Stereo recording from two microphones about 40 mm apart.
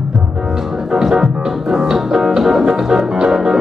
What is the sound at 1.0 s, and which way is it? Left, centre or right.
Music, centre.